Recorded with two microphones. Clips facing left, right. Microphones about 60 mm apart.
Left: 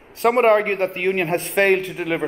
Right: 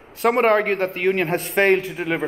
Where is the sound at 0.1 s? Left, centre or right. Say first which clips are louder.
Left 2 dB; centre.